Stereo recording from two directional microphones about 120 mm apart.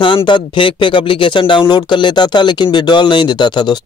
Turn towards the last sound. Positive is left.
turn(degrees=40)  # may be behind; listen again after turning